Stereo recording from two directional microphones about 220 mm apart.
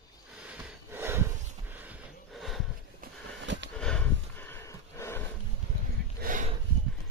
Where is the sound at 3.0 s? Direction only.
55° right (ahead or behind).